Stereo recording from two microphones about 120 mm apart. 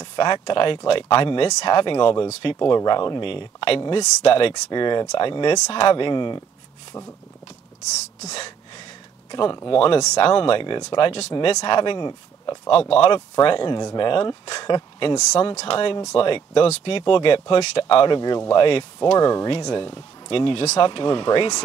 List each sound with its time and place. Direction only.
0.0 s speech: 40° left (ahead or behind)
4.6 s speech: 40° left (ahead or behind)
8.2 s speech: 65° left (ahead or behind)
9.3 s speech: 35° left (ahead or behind)
9.7 s speech: 50° left (ahead or behind)
12.9 s speech: 45° left (ahead or behind)
15.1 s speech: 60° left (ahead or behind); by 21.6 s 40° left (ahead or behind)